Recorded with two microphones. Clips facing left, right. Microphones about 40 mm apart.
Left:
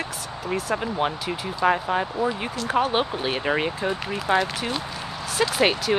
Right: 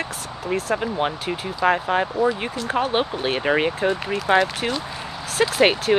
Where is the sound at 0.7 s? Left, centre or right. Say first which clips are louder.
Right 2 dB; centre.